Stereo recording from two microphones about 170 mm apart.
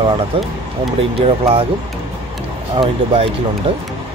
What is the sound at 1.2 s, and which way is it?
Speech, 35° right (ahead or behind).